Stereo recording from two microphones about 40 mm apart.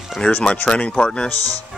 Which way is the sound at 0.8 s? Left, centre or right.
Left.